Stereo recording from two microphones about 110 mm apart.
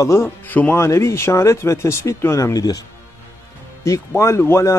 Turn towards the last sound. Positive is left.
turn(degrees=25)  # may be behind; listen again after turning